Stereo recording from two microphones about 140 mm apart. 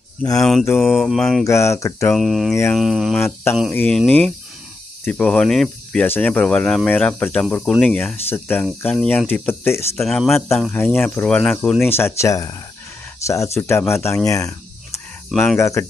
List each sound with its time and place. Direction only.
0.4 s mantra: centre (ahead or behind)
1.4 s speech: 20° left (ahead or behind)
2.1 s mantra: centre (ahead or behind)
3.2 s speech: 15° left (ahead or behind)
3.7 s speech: 5° left (ahead or behind)
5.0 s cricket: 10° left (ahead or behind)
6.0 s speech: 15° left (ahead or behind)
9.9 s mantra: 5° left (ahead or behind)
10.7 s speech: 15° left (ahead or behind)